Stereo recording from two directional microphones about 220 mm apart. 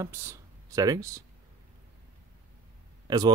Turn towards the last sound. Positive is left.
turn(degrees=-20)  # may be behind; listen again after turning